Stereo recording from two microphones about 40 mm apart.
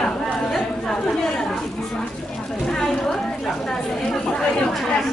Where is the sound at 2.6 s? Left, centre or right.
Centre.